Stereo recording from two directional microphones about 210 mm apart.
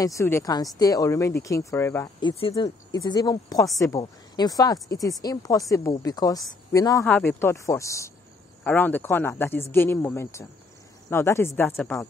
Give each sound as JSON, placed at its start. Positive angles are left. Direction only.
{"t": 0.0, "sound": "a woman's voice", "side_deg": 15}
{"t": 2.2, "sound": "a woman's voice", "side_deg": 25}